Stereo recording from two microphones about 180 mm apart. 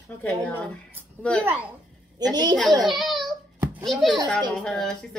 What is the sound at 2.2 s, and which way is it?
Speech, 20° right (ahead or behind).